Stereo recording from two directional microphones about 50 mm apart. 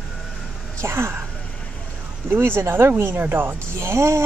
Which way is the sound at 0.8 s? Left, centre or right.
Right.